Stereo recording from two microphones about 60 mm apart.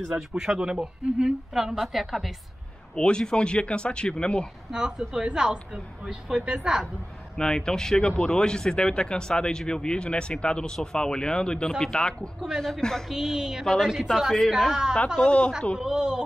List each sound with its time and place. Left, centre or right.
0.4 s a woman's voice: centre
3.0 s speech: centre
4.6 s a woman's voice: centre
7.3 s speech: centre
12.4 s a woman's voice: centre
12.6 s speech: centre
13.1 s a woman's voice: centre
15.1 s speech: centre
15.8 s a woman's voice: centre